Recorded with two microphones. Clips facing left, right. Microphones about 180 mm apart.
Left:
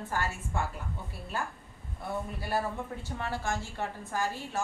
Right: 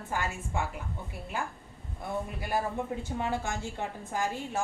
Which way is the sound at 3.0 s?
20° right (ahead or behind).